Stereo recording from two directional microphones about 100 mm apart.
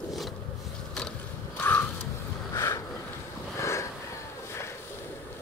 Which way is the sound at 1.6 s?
20° left (ahead or behind).